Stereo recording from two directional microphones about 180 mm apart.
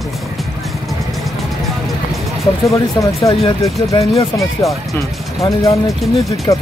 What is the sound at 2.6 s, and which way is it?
Speech, 15° left (ahead or behind).